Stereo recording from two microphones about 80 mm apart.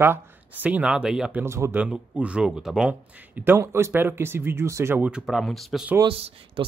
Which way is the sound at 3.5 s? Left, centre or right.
Right.